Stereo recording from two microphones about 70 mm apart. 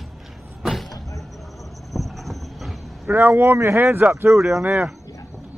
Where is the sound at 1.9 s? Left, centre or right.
Centre.